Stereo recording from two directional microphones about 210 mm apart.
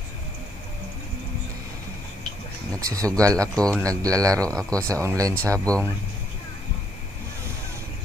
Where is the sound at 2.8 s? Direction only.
15° right (ahead or behind).